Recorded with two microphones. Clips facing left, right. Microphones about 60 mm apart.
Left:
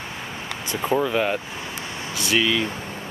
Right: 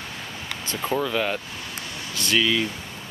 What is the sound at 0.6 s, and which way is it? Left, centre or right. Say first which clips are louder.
Speech: left 3 dB; centre.